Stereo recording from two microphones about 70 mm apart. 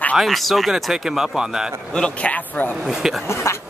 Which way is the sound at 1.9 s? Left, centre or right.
Centre.